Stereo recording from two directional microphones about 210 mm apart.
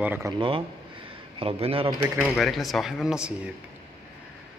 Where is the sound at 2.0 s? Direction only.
Centre (ahead or behind).